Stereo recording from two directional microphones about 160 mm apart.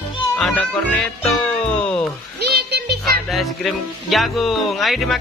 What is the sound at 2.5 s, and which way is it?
Music, 90° right.